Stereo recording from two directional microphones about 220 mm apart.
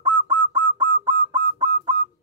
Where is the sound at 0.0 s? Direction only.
20° right (ahead or behind).